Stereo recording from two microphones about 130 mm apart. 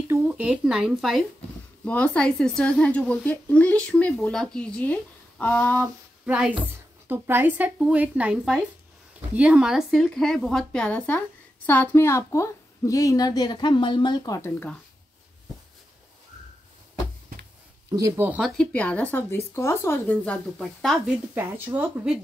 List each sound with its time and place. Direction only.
0.1 s speech: 10° right (ahead or behind)
1.9 s a woman's voice: 10° left (ahead or behind)
6.2 s a woman's voice: 10° right (ahead or behind); by 14.5 s 30° left (ahead or behind)
17.9 s speech: 25° right (ahead or behind)
18.4 s a woman's voice: 10° left (ahead or behind)
21.4 s speech: 15° right (ahead or behind)